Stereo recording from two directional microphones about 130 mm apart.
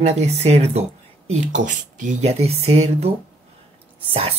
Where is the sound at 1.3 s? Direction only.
75° right (ahead or behind); by 3.1 s 55° right (ahead or behind).